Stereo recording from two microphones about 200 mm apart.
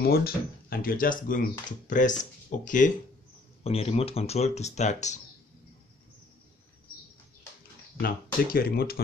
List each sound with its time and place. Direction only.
0.0 s speech: 50° left (ahead or behind); by 5.2 s 35° left (ahead or behind)
8.0 s speech: 45° left (ahead or behind)